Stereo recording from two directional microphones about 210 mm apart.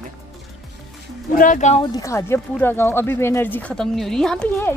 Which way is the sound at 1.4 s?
35° left (ahead or behind).